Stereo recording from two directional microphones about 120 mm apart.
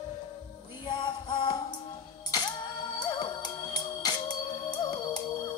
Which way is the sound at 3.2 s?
35° left (ahead or behind).